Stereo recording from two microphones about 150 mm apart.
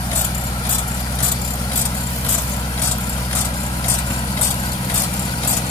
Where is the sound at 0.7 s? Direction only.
35° left (ahead or behind).